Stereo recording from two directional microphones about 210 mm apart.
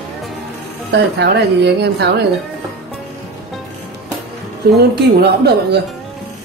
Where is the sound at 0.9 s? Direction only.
50° right (ahead or behind).